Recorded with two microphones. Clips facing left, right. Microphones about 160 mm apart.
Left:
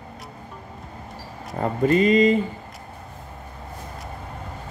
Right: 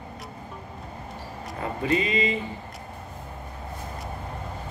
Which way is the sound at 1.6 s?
45° left (ahead or behind).